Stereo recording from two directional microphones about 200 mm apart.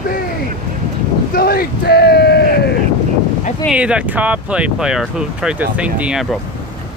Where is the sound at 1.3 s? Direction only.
50° left (ahead or behind).